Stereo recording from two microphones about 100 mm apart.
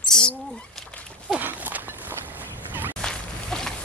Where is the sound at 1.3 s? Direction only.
15° right (ahead or behind).